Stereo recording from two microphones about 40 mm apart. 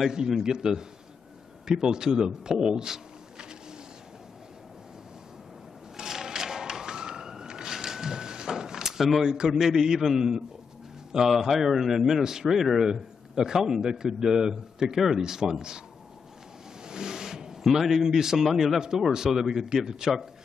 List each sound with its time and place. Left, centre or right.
0.4 s a man's voice: centre
5.9 s thump: centre
9.5 s a man's voice: centre
16.8 s a sound: centre
17.6 s a man's voice: centre